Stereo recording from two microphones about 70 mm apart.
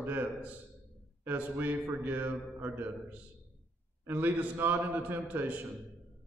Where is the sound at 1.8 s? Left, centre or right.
Right.